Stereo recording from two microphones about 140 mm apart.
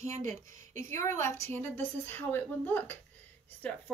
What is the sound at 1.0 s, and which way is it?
A woman's voice, 20° left (ahead or behind).